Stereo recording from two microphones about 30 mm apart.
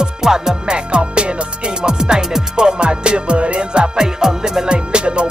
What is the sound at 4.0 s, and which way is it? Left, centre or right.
Music, centre.